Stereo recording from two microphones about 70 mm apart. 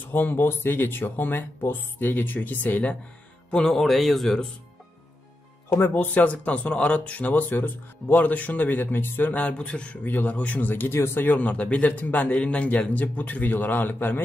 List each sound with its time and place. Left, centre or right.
0.0 s speech: left
3.5 s a man's voice: centre
5.7 s speech: left